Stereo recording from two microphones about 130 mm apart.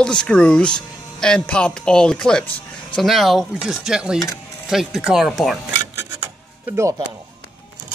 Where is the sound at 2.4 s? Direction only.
45° left (ahead or behind).